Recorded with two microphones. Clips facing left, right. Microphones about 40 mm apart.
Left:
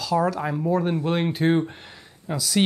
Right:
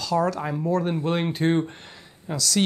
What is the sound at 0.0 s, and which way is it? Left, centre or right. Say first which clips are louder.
Speech: left 1 dB; centre.